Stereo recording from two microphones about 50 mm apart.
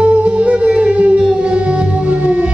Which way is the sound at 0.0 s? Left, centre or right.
Right.